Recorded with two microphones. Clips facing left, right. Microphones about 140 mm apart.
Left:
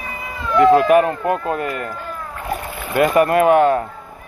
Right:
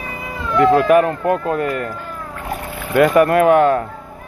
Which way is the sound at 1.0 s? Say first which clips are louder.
Right 2 dB; 15° left (ahead or behind).